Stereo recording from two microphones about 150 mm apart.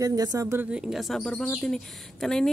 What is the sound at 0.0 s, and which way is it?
Speech, 25° right (ahead or behind).